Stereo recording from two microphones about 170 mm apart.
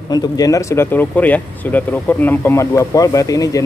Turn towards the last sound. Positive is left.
turn(degrees=20)  # may be behind; listen again after turning